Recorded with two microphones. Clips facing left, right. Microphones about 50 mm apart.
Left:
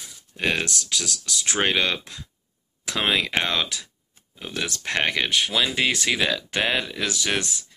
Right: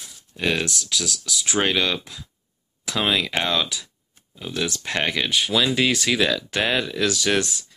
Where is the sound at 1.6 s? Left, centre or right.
Left.